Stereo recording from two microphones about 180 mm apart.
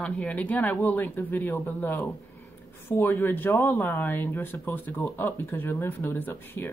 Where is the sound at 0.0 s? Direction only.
5° left (ahead or behind).